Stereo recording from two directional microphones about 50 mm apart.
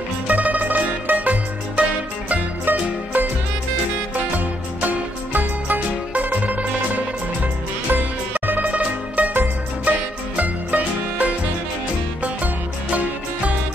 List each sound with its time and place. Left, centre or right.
0.3 s music: right
2.6 s music: right
4.8 s music: right
7.9 s music: right
12.9 s music: right